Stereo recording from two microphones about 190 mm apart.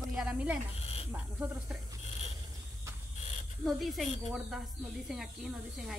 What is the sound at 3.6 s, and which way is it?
Speech, centre (ahead or behind).